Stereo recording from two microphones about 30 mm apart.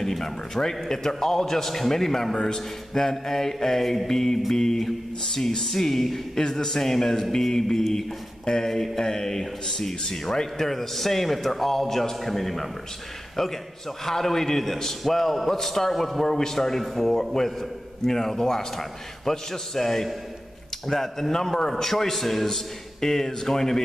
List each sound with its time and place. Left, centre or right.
0.0 s speech: centre
16.3 s speech: centre
22.1 s speech: centre